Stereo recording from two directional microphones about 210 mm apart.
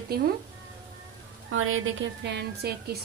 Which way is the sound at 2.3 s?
55° right (ahead or behind).